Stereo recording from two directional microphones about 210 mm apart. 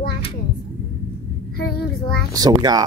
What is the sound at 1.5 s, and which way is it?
Child singing, 45° left (ahead or behind).